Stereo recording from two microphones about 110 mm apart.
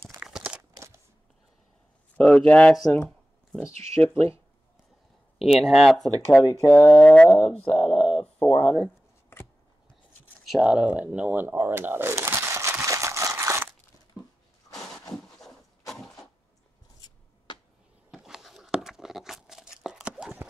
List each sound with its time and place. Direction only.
0.2 s crumpling: 10° right (ahead or behind)
2.1 s speech: 10° left (ahead or behind)
5.4 s speech: centre (ahead or behind)
6.6 s speech: 20° left (ahead or behind)
7.6 s speech: 55° left (ahead or behind)
8.2 s speech: 10° left (ahead or behind)
10.5 s a sound: 10° right (ahead or behind)
18.1 s tearing: 5° right (ahead or behind)